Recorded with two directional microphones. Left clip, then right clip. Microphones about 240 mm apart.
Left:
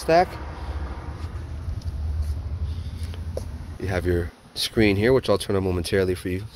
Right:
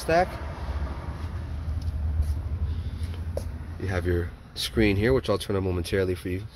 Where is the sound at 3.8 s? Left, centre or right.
Left.